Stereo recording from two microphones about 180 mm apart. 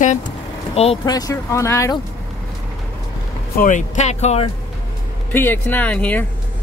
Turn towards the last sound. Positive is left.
turn(degrees=10)  # may be behind; listen again after turning